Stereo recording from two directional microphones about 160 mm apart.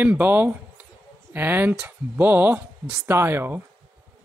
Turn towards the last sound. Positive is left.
turn(degrees=-15)  # may be behind; listen again after turning